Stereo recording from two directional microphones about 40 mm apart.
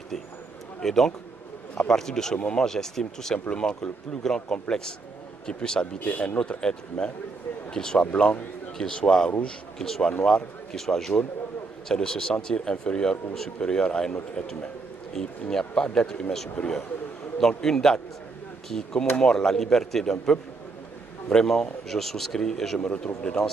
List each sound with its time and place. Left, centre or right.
0.7 s a man's voice: centre
2.3 s speech: left
2.6 s speech: centre
8.0 s a man's voice: left
8.7 s speech: centre
15.7 s speech: left
22.8 s speech: left